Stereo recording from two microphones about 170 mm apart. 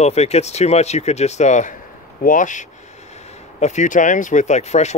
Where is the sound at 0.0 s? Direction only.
40° left (ahead or behind).